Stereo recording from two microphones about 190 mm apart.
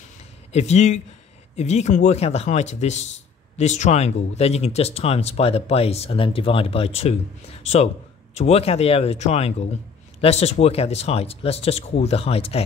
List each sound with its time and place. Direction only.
0.5 s speech: 35° left (ahead or behind)